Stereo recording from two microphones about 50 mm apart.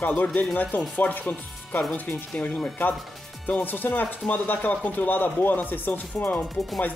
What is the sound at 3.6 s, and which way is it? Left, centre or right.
Speech, left.